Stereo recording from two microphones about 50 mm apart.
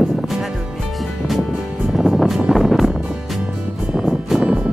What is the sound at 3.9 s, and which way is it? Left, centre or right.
Music, centre.